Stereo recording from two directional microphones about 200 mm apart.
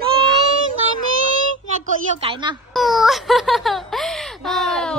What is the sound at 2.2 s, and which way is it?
Speech, 25° right (ahead or behind).